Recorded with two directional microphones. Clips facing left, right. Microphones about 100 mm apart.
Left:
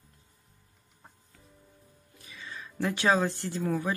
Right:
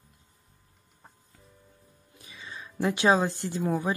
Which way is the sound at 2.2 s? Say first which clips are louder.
Even; 20° right (ahead or behind).